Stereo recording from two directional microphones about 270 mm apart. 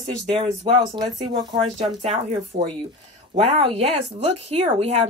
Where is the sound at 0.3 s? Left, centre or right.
Centre.